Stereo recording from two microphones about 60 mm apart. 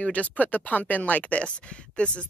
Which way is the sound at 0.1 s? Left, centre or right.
Left.